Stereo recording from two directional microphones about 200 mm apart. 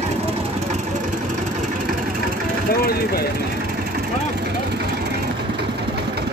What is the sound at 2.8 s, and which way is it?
Vehicle, 50° left (ahead or behind).